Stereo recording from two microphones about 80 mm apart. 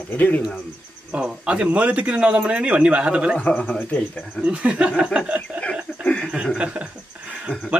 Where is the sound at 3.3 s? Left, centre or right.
Centre.